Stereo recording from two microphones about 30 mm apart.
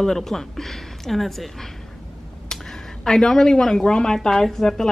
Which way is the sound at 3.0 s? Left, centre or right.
Centre.